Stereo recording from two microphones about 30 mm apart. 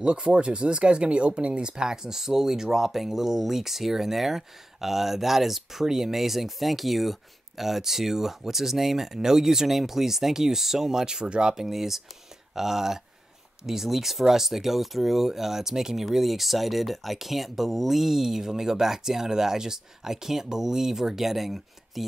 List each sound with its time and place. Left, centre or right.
0.0 s speech: right
1.8 s speech: right
11.5 s speech: centre
16.1 s speech: centre